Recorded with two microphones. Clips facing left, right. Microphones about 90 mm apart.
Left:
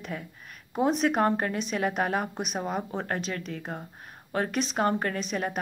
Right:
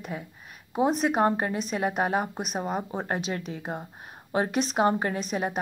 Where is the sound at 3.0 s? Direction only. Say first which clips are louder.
Right 2 dB; 15° right (ahead or behind).